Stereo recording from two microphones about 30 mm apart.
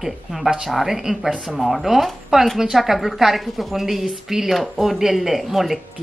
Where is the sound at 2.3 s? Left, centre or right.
Centre.